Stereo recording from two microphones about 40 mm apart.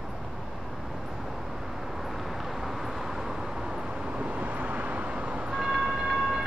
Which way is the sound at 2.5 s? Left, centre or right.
Centre.